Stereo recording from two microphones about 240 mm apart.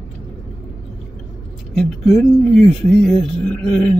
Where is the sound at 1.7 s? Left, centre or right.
Centre.